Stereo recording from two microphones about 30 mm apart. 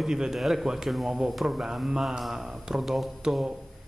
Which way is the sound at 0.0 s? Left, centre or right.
Centre.